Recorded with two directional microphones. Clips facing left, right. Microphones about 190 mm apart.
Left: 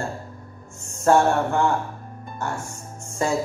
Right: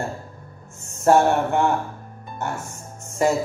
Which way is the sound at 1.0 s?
20° right (ahead or behind).